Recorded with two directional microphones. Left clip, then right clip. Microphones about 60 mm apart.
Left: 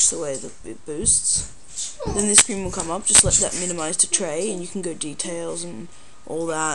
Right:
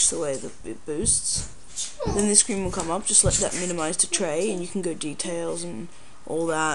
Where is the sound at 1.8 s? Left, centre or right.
Right.